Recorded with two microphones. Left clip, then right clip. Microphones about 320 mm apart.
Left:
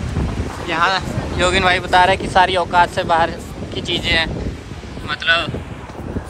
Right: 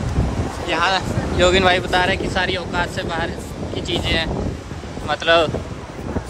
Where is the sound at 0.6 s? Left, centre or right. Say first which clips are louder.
Left 2 dB; centre.